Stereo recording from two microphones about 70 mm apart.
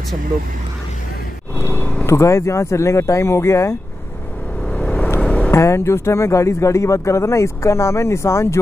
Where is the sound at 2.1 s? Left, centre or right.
Left.